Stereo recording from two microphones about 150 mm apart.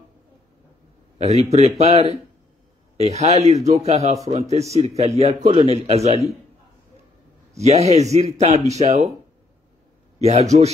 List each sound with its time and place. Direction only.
1.1 s speech: 45° right (ahead or behind)
7.5 s speech: 45° right (ahead or behind)
10.1 s a man's voice: 45° right (ahead or behind)